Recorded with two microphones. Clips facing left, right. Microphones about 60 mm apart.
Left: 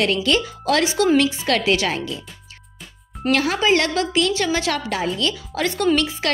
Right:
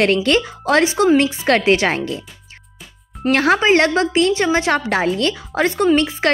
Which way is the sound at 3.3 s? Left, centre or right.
Right.